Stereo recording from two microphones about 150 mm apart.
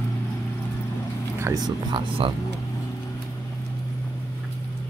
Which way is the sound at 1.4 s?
25° right (ahead or behind).